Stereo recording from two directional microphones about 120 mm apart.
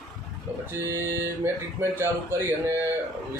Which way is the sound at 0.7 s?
20° right (ahead or behind).